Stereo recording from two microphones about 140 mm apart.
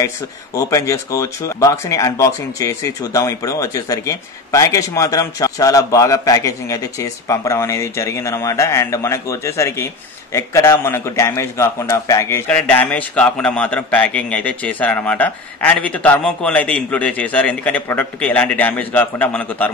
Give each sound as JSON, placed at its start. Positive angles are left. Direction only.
{"t": 0.6, "sound": "a man's voice", "side_deg": 20}